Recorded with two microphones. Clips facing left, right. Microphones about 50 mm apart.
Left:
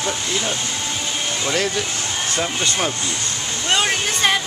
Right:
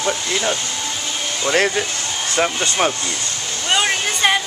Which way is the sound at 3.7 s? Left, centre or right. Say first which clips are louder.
Right 1 dB; centre.